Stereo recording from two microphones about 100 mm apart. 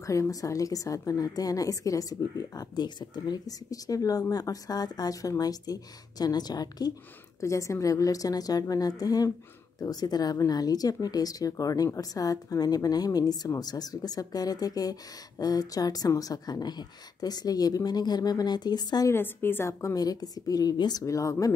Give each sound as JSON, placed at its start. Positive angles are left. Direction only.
{"t": 0.0, "sound": "speech", "side_deg": 30}
{"t": 19.0, "sound": "speech", "side_deg": 20}
{"t": 21.0, "sound": "speech", "side_deg": 30}